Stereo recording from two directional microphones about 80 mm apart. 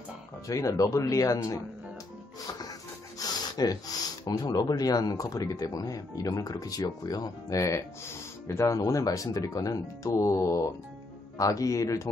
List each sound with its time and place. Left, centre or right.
0.5 s speech: left
3.2 s gasp: left
4.3 s speech: left